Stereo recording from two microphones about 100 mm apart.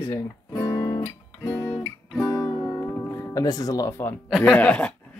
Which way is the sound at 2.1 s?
20° left (ahead or behind).